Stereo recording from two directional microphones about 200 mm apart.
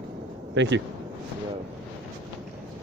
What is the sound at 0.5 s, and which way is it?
Speech, 65° right (ahead or behind).